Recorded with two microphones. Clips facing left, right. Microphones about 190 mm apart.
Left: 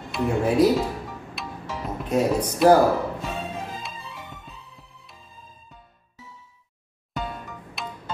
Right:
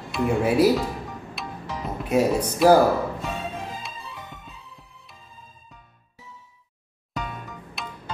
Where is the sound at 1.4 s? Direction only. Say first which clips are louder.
Even; centre (ahead or behind).